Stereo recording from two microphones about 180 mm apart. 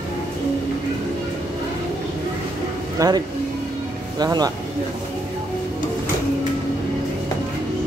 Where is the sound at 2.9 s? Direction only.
20° right (ahead or behind).